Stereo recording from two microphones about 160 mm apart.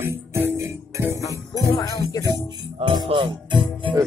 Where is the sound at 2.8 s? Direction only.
35° right (ahead or behind).